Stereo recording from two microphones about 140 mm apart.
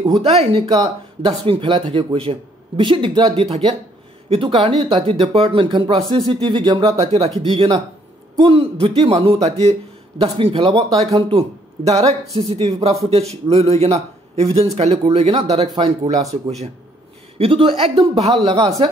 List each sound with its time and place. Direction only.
0.2 s speech: 45° right (ahead or behind); by 7.0 s 30° right (ahead or behind)
7.0 s speech: 45° right (ahead or behind)
8.4 s speech: 40° right (ahead or behind)
15.7 s speech: 30° right (ahead or behind)
16.4 s speech: 50° right (ahead or behind)